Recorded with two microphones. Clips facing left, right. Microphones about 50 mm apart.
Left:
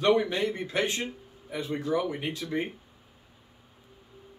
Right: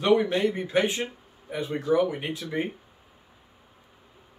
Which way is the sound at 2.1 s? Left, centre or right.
Centre.